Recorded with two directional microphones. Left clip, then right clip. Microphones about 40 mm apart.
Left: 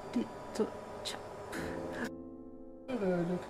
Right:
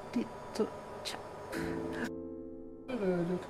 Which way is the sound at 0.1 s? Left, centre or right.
Centre.